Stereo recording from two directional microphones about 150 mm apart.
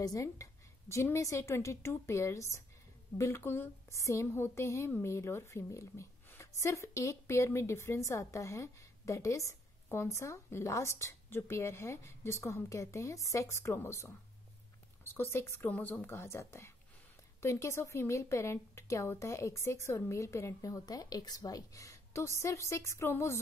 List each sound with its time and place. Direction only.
0.0 s a woman's voice: 20° left (ahead or behind)